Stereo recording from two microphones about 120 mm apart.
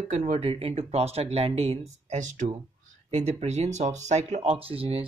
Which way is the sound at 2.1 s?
90° right.